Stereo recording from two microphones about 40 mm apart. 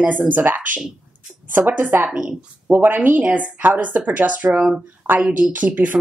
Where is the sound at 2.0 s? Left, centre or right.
Right.